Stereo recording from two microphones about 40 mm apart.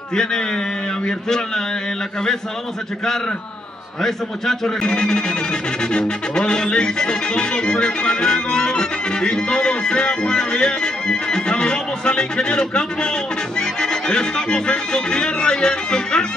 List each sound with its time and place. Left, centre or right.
0.1 s a man's voice: centre
4.0 s a man's voice: centre
4.8 s music: left